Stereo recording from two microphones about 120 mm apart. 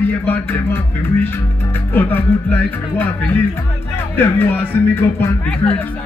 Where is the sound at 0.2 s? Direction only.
15° left (ahead or behind).